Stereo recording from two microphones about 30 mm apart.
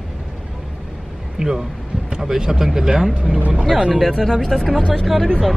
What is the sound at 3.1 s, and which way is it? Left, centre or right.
Speech, right.